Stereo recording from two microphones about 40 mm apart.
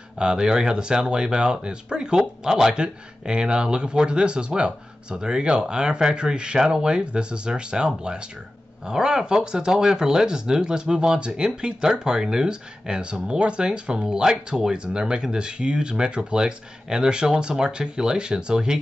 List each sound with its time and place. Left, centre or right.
0.2 s speech: right